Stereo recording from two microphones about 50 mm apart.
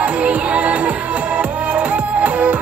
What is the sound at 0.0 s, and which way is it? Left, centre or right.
Music, right.